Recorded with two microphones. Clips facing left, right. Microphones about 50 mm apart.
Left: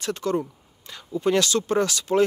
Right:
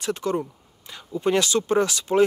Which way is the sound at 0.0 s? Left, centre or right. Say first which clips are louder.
Even; centre.